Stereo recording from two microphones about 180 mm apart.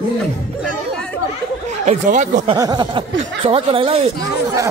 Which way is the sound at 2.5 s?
20° right (ahead or behind).